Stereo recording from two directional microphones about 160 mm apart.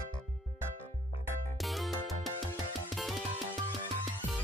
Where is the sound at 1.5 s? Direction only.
Centre (ahead or behind).